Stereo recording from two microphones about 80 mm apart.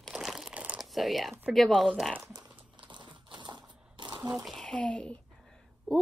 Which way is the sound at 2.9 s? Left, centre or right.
Right.